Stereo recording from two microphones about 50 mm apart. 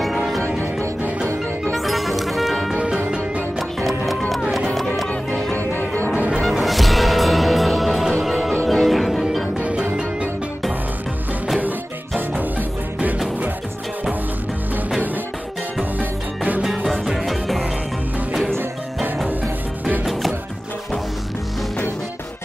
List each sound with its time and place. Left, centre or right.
1.7 s music: centre
4.3 s run: centre
5.0 s music: centre
5.5 s music: left
6.1 s music: right
6.5 s music: centre
9.6 s music: right
12.4 s music: right
16.0 s music: right
17.0 s music: centre
20.1 s music: centre